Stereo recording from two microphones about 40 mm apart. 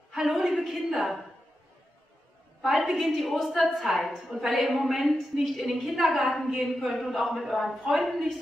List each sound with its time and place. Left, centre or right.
0.1 s a woman's voice: centre
2.6 s a woman's voice: centre